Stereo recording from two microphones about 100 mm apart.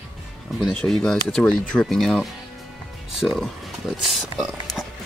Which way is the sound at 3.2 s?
Centre (ahead or behind).